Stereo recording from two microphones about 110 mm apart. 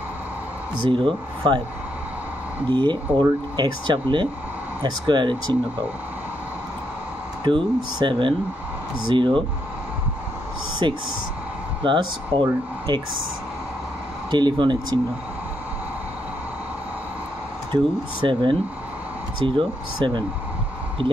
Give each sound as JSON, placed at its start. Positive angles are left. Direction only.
{"t": 0.8, "sound": "speech", "side_deg": -50}
{"t": 2.7, "sound": "speech", "side_deg": -45}
{"t": 7.4, "sound": "speech", "side_deg": -45}
{"t": 10.8, "sound": "speech", "side_deg": -50}
{"t": 14.3, "sound": "speech", "side_deg": -45}
{"t": 18.2, "sound": "speech", "side_deg": -50}